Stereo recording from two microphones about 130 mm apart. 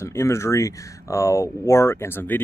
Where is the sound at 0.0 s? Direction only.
20° left (ahead or behind).